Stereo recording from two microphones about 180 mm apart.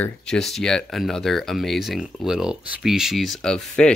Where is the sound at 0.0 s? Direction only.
5° left (ahead or behind).